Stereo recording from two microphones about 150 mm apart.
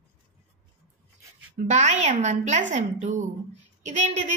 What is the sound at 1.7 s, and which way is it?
A woman's voice, 55° right (ahead or behind).